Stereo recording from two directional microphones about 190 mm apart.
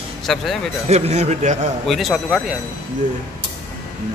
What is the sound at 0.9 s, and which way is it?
Speech, 35° right (ahead or behind).